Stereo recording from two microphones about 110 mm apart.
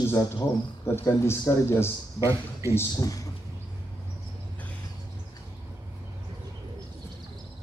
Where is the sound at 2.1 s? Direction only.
25° right (ahead or behind).